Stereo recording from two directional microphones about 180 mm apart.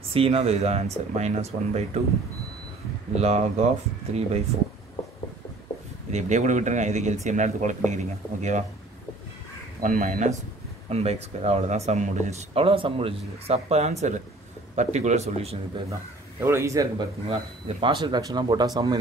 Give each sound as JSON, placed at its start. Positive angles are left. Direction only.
{"t": 0.1, "sound": "speech", "side_deg": -30}
{"t": 3.2, "sound": "speech", "side_deg": -35}
{"t": 6.1, "sound": "speech", "side_deg": -40}
{"t": 9.8, "sound": "speech", "side_deg": -45}
{"t": 15.9, "sound": "a man's voice", "side_deg": -15}
{"t": 17.3, "sound": "speech", "side_deg": -30}